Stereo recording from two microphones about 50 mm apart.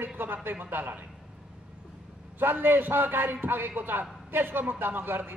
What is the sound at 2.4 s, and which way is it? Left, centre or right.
A man's voice, right.